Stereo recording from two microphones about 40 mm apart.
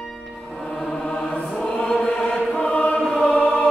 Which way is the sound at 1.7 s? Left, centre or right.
Centre.